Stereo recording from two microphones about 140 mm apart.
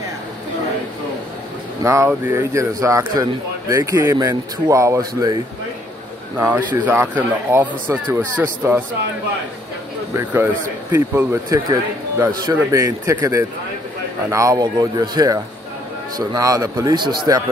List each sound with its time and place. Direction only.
1.8 s a man's voice: 20° right (ahead or behind)
10.1 s a man's voice: 15° right (ahead or behind); by 17.1 s 30° right (ahead or behind)